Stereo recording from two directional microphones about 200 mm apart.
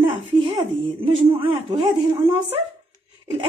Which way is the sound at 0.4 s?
25° right (ahead or behind).